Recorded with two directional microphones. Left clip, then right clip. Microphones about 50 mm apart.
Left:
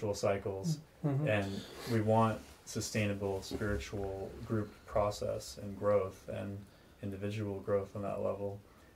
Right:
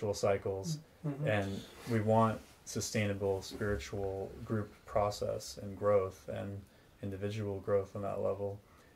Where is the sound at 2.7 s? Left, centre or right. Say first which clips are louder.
Right 1 dB; right.